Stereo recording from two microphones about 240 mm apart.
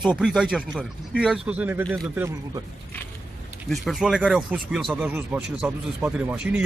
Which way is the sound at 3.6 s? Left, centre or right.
Centre.